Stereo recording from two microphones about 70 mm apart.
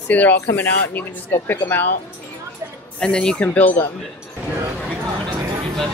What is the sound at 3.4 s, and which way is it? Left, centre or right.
Speech, left.